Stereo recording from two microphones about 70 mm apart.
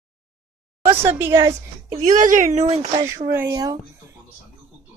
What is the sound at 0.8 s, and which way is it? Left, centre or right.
Speech, right.